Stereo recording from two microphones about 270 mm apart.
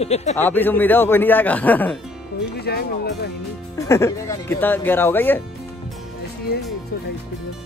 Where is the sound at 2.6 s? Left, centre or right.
Left.